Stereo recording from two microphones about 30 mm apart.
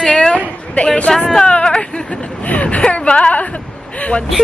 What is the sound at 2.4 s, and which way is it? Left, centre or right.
Speech, left.